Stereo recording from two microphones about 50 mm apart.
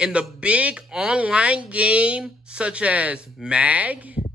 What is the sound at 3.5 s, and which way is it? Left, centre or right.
Speech, right.